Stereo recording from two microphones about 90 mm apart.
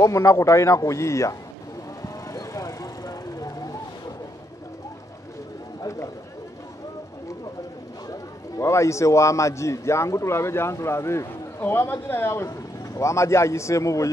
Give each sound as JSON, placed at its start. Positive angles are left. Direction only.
{"t": 0.0, "sound": "a man's voice", "side_deg": 35}
{"t": 2.3, "sound": "vehicle", "side_deg": 40}
{"t": 5.8, "sound": "run", "side_deg": 35}
{"t": 8.1, "sound": "a man's voice", "side_deg": 30}